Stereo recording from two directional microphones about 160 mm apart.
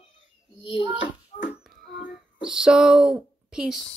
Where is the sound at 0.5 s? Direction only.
35° left (ahead or behind).